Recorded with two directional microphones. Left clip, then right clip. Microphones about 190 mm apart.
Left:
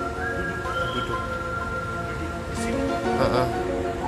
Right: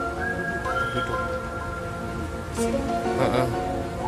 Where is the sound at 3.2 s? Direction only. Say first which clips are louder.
Left 1 dB; 20° right (ahead or behind).